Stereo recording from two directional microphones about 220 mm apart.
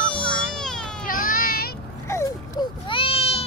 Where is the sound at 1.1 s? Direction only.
40° left (ahead or behind).